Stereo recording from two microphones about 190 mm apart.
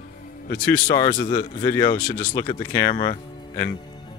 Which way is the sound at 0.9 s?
25° left (ahead or behind).